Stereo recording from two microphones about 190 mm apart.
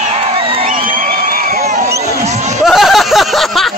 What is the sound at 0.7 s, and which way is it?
Crowd, 45° right (ahead or behind).